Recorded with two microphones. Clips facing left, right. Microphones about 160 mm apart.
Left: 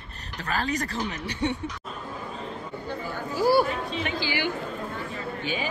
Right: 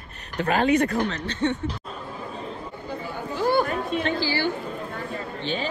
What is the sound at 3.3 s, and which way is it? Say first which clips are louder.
Chatter: left 1 dB; 5° left (ahead or behind).